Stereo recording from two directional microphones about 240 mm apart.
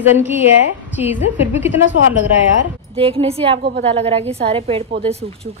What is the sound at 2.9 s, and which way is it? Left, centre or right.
Speech, right.